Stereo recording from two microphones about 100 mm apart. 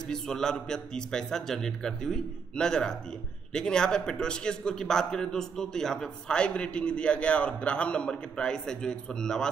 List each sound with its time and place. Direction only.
0.1 s a man's voice: 5° left (ahead or behind)